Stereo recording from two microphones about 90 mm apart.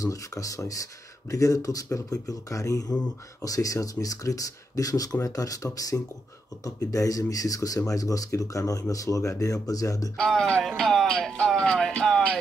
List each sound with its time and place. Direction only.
0.0 s speech: 40° left (ahead or behind)
10.1 s music: 5° left (ahead or behind)